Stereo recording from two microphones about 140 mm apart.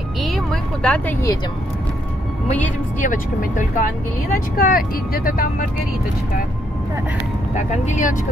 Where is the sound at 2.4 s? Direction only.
60° left (ahead or behind).